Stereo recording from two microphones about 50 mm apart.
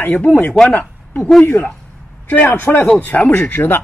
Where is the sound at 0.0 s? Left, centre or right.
Left.